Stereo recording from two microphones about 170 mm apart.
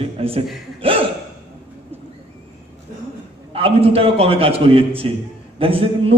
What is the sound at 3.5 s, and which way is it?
A man's voice, 35° right (ahead or behind).